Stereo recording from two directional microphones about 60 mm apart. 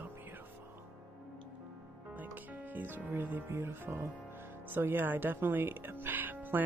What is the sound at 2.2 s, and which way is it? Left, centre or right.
Speech, right.